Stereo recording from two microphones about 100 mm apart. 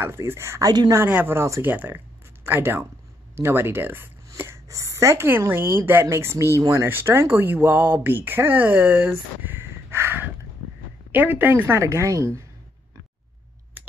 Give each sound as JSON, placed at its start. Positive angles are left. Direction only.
{"t": 0.0, "sound": "speech", "side_deg": -25}
{"t": 0.7, "sound": "a woman's voice", "side_deg": -40}
{"t": 0.9, "sound": "speech", "side_deg": -20}
{"t": 13.8, "sound": "clicking", "side_deg": -20}